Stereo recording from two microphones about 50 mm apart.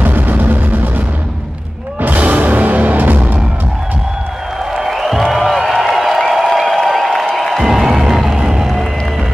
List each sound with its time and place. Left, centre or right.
0.0 s music: right
4.7 s music: centre